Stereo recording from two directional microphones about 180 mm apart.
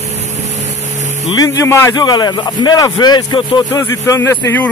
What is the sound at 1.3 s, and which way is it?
A man's voice, 20° left (ahead or behind).